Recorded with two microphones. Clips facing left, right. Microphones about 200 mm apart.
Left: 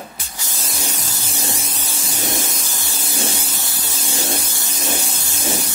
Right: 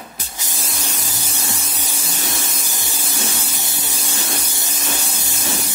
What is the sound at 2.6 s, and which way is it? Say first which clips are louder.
Spray: even; 15° right (ahead or behind).